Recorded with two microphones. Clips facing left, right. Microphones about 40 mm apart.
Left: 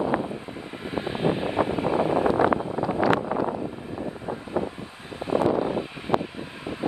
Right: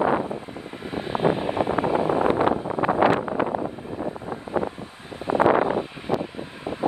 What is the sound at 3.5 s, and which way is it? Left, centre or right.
Vehicle, right.